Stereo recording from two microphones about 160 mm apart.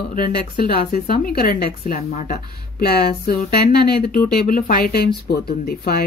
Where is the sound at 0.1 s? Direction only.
60° left (ahead or behind).